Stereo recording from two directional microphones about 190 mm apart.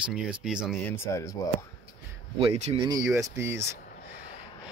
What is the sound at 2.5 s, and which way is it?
Speech, 35° right (ahead or behind).